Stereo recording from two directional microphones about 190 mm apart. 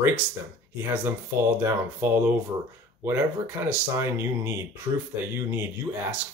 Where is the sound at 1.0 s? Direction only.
15° right (ahead or behind).